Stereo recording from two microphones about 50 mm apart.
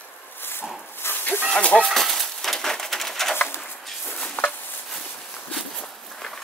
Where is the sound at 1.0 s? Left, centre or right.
Left.